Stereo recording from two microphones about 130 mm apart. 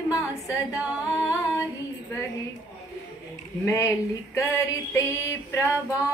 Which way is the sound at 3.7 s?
25° left (ahead or behind).